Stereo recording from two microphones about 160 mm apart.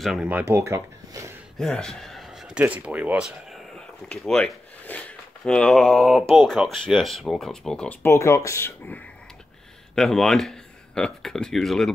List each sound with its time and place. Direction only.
0.0 s speech: 5° right (ahead or behind)
1.6 s a man's voice: 5° left (ahead or behind)
9.9 s speech: 5° left (ahead or behind)